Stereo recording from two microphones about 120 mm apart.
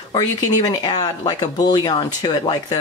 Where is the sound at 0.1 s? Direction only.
35° left (ahead or behind).